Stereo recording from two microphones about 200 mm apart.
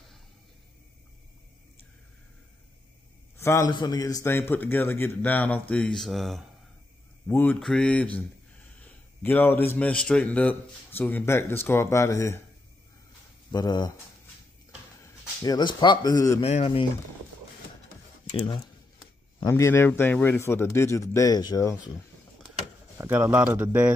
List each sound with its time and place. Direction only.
3.3 s a man's voice: 15° left (ahead or behind)
9.2 s a man's voice: 10° left (ahead or behind)
13.5 s speech: 20° left (ahead or behind)
15.4 s speech: 20° left (ahead or behind)
16.4 s speech: 30° left (ahead or behind)
18.3 s speech: 30° left (ahead or behind)
19.4 s a man's voice: 15° left (ahead or behind)
22.9 s speech: 10° right (ahead or behind)